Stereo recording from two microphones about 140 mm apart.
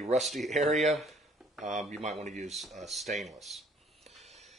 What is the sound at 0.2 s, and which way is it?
Speech, centre (ahead or behind).